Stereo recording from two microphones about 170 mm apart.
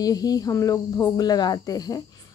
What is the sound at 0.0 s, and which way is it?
Speech, 20° left (ahead or behind).